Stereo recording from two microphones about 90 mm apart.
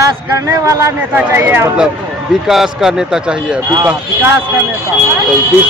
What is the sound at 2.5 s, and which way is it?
Speech, 5° right (ahead or behind).